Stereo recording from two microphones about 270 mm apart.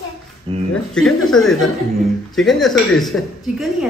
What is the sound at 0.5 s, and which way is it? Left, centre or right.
Speech, centre.